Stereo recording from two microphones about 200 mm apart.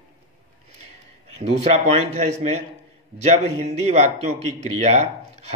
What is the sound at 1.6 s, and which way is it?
Speech, 30° right (ahead or behind).